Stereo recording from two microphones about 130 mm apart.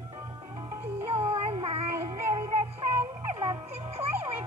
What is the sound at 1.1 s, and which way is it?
Music, 45° right (ahead or behind).